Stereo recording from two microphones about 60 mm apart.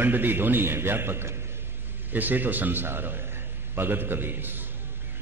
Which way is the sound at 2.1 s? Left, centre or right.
Right.